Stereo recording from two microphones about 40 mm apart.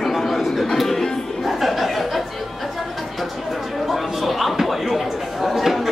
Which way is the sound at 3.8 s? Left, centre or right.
Centre.